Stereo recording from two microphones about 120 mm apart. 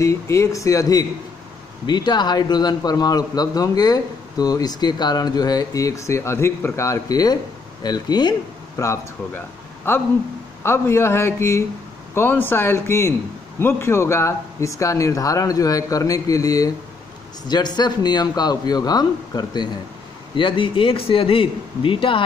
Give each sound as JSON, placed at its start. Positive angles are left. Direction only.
{"t": 0.0, "sound": "a man's voice", "side_deg": 25}
{"t": 8.7, "sound": "a man's voice", "side_deg": 25}